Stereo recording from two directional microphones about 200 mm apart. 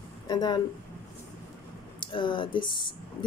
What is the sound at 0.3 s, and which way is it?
Speech, 20° left (ahead or behind).